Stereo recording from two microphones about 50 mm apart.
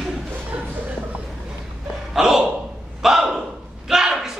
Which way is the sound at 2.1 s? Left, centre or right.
Centre.